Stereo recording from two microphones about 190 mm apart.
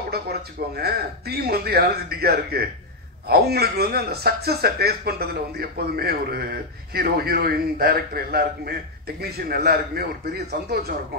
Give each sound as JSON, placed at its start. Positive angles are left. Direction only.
{"t": 0.1, "sound": "a man's voice", "side_deg": -55}